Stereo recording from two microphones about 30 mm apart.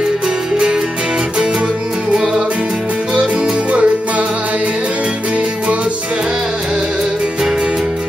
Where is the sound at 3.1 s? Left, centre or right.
Right.